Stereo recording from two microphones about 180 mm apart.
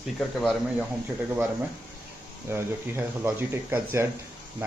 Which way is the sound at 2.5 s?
10° right (ahead or behind).